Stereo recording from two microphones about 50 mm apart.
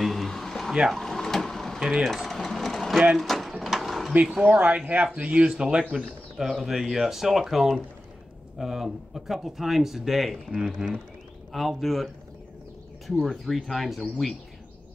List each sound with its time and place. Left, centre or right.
0.0 s a sound: centre
0.9 s printer: centre
1.8 s speech: centre
2.0 s sewing machine: centre
3.2 s a sound: centre
4.4 s speech: right
6.3 s speech: centre
11.5 s speech: centre
13.2 s speech: centre